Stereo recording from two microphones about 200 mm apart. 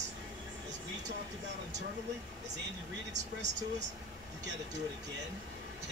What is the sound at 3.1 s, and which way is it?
Speech, 60° right (ahead or behind).